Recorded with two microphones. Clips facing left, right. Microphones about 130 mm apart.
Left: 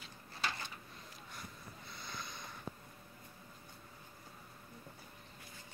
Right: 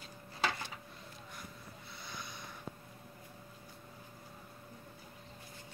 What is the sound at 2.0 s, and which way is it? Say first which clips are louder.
Snort: even; 5° right (ahead or behind).